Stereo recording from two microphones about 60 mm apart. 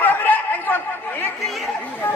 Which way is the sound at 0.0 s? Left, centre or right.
Left.